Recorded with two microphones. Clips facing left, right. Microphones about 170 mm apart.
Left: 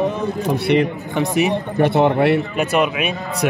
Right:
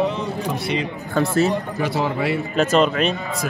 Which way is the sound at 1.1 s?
15° left (ahead or behind).